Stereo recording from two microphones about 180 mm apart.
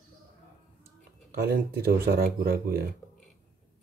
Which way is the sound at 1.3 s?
55° right (ahead or behind).